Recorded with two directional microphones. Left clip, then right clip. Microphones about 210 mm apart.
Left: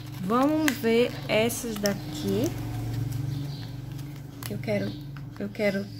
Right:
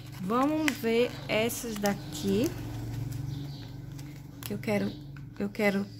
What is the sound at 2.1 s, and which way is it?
Speech, 25° right (ahead or behind).